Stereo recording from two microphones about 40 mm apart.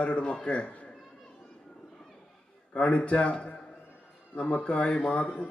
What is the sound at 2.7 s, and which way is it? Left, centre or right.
A man's voice, left.